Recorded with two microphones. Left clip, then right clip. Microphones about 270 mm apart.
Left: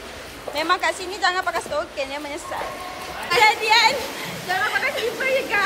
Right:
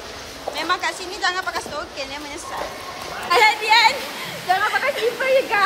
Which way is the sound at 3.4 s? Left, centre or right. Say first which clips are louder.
Right 1 dB; centre.